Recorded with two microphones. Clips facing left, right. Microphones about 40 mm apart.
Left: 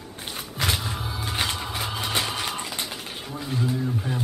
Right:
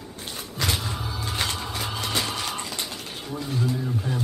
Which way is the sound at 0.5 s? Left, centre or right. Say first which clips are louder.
Left 1 dB; centre.